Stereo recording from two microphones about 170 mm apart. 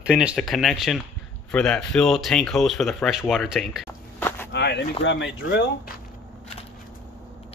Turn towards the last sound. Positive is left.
turn(degrees=75)  # may be behind; listen again after turning